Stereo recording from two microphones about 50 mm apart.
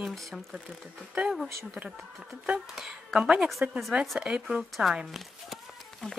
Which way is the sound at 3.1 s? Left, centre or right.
Centre.